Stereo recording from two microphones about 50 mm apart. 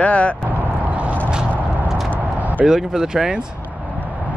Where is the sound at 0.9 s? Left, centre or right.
Right.